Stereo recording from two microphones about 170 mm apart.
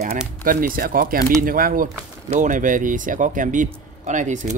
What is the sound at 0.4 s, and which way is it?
Speech, 55° right (ahead or behind).